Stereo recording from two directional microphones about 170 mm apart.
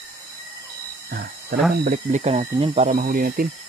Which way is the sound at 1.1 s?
60° right (ahead or behind).